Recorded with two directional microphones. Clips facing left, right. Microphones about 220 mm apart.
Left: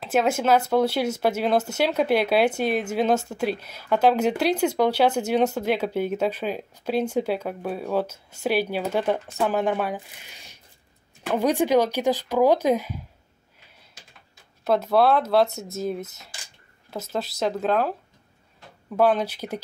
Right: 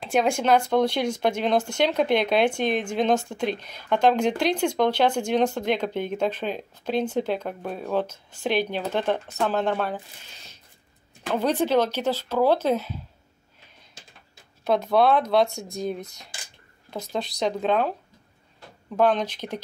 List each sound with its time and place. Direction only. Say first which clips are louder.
0.0 s speech: left 1 dB; 5° left (ahead or behind)
14.6 s speech: left 1 dB; 5° left (ahead or behind)